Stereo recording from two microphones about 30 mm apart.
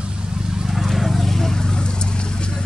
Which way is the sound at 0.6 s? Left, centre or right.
Centre.